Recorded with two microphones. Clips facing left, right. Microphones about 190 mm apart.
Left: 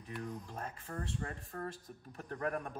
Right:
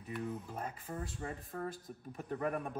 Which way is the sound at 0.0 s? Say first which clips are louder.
Right 3 dB; 5° right (ahead or behind).